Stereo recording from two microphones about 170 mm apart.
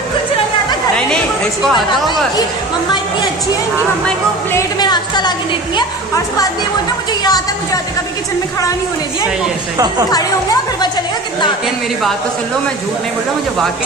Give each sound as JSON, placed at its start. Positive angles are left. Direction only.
{"t": 1.9, "sound": "speech", "side_deg": 25}
{"t": 4.5, "sound": "a woman's voice", "side_deg": 20}
{"t": 7.2, "sound": "speech", "side_deg": 20}